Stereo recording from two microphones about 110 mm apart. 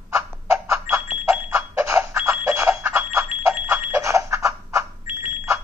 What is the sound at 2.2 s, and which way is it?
Bicycle bell, 15° right (ahead or behind).